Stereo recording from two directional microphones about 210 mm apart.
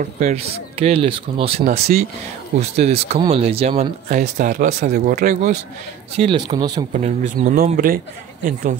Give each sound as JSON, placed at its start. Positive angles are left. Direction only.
{"t": 0.0, "sound": "speech", "side_deg": -35}
{"t": 1.9, "sound": "speech", "side_deg": -40}
{"t": 6.1, "sound": "speech", "side_deg": -25}
{"t": 6.9, "sound": "speech", "side_deg": -35}